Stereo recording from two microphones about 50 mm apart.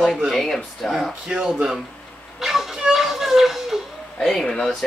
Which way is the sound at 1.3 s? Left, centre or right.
Centre.